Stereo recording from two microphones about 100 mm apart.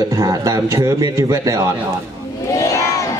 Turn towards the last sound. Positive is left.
turn(degrees=30)  # may be behind; listen again after turning